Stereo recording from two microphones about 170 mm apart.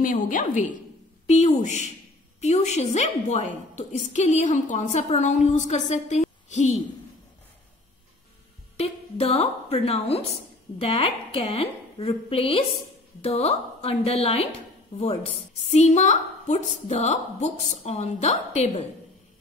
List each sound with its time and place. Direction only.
0.0 s a woman's voice: 50° left (ahead or behind)
8.7 s a woman's voice: 35° left (ahead or behind)